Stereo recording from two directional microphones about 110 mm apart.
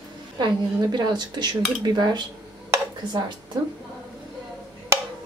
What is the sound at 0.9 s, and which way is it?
Speech, 40° right (ahead or behind).